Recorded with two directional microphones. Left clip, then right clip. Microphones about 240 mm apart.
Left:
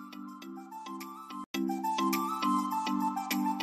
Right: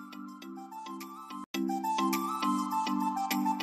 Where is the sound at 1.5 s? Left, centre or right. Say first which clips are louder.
Right 1 dB; centre.